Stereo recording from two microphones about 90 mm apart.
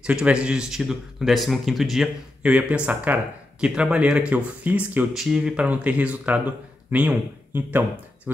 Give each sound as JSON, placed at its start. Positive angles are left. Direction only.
{"t": 0.0, "sound": "speech", "side_deg": -10}
{"t": 2.4, "sound": "speech", "side_deg": -10}
{"t": 5.1, "sound": "speech", "side_deg": -5}